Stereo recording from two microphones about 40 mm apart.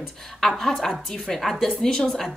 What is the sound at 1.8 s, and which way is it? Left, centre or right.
Speech, centre.